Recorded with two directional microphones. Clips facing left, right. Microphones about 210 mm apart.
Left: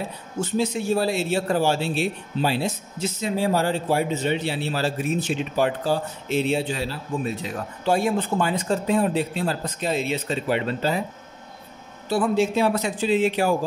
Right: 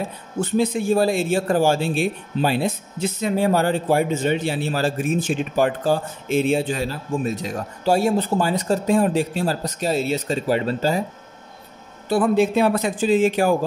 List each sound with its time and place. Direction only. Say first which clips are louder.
0.4 s speech: right 4 dB; 60° right (ahead or behind); by 11.1 s 40° right (ahead or behind)
12.1 s speech: right 3 dB; 55° right (ahead or behind)